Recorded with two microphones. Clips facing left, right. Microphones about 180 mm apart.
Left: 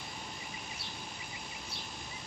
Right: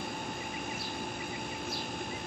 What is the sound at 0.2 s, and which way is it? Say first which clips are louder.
Vehicle: right 8 dB; 55° right (ahead or behind).